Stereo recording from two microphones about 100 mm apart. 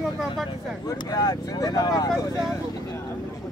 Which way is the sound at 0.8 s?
40° left (ahead or behind).